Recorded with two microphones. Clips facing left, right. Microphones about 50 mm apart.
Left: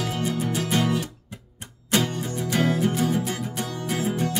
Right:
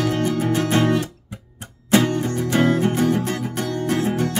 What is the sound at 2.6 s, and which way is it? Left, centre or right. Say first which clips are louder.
Music: right 4 dB; right.